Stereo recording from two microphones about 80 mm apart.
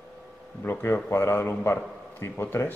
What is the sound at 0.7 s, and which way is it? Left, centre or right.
A man's voice, left.